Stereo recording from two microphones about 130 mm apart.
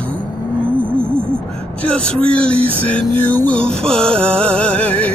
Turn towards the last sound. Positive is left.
turn(degrees=10)  # may be behind; listen again after turning